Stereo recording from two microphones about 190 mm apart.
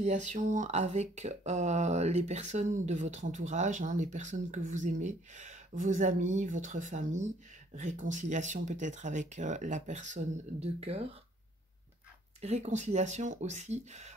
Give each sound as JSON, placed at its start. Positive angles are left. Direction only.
{"t": 0.0, "sound": "speech", "side_deg": -40}
{"t": 12.4, "sound": "speech", "side_deg": -35}